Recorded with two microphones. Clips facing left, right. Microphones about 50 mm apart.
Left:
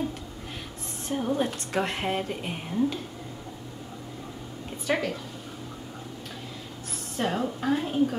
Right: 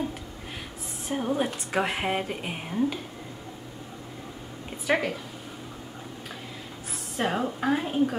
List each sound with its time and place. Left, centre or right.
1.0 s a woman's voice: centre
4.8 s a woman's voice: centre
6.9 s a sound: centre
7.3 s a woman's voice: centre